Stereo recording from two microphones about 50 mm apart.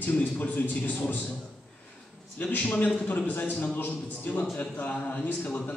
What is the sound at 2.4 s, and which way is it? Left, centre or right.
A man's voice, left.